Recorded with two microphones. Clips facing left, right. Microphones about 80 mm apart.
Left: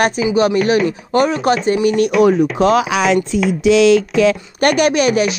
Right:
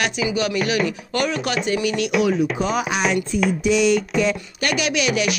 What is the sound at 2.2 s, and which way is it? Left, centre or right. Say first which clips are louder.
Music: left 7 dB; left.